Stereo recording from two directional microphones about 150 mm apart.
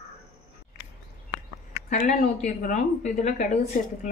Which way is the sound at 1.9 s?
60° left (ahead or behind).